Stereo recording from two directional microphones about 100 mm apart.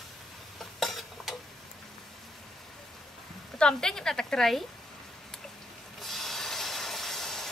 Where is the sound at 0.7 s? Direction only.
Centre (ahead or behind).